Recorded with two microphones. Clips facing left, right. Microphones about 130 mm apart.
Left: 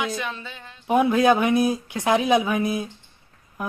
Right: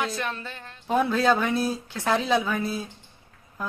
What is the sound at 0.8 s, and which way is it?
Speech, 15° left (ahead or behind).